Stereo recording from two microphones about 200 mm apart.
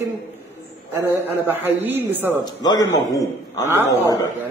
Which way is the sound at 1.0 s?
10° right (ahead or behind).